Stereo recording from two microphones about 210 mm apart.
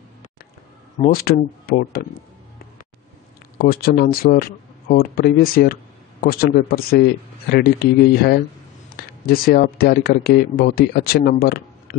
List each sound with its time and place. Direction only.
0.9 s speech: 40° left (ahead or behind)
3.5 s speech: 45° left (ahead or behind)